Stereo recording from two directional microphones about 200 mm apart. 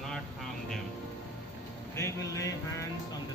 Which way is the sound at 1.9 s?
15° left (ahead or behind).